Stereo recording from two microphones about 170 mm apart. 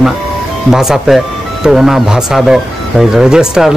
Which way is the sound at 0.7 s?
Centre (ahead or behind).